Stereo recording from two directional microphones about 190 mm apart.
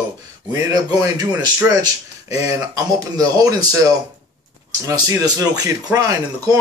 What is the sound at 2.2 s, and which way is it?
Speech, 20° right (ahead or behind).